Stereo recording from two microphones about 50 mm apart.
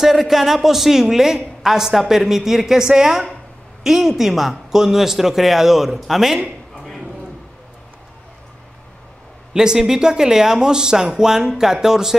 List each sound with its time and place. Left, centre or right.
0.0 s a woman's voice: centre
9.5 s a woman's voice: centre